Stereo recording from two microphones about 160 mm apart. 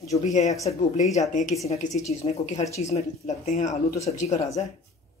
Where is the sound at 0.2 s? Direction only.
45° left (ahead or behind).